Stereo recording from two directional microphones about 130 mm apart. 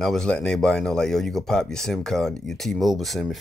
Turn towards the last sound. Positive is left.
turn(degrees=0)  # may be behind; listen again after turning